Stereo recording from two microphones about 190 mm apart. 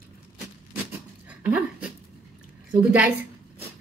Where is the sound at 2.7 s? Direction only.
5° right (ahead or behind).